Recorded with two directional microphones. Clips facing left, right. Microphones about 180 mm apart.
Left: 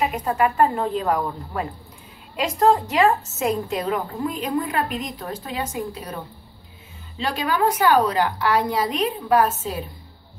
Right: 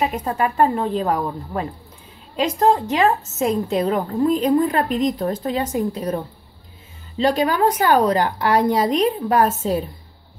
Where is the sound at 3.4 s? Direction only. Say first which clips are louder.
Right 5 dB; 30° right (ahead or behind).